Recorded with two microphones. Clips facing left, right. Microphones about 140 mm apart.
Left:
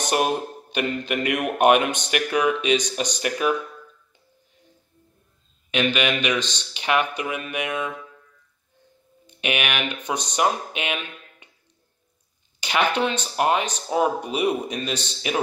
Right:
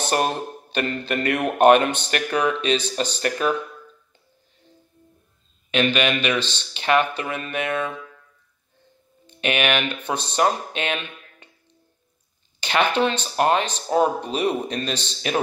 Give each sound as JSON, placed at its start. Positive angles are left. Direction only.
{"t": 0.0, "sound": "a man's voice", "side_deg": 10}
{"t": 5.7, "sound": "a man's voice", "side_deg": 10}
{"t": 9.2, "sound": "speech", "side_deg": 10}
{"t": 12.5, "sound": "a man's voice", "side_deg": 10}